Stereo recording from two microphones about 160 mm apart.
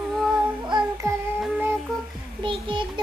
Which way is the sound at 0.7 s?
25° right (ahead or behind).